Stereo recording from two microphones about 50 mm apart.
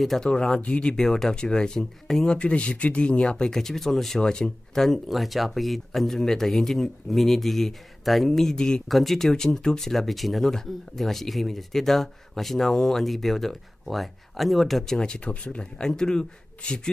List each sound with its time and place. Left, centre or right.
0.2 s speech: centre
0.9 s speech: centre
2.3 s speech: left; by 4.2 s centre
4.2 s speech: centre
4.8 s speech: centre
8.8 s speech: centre
15.0 s speech: centre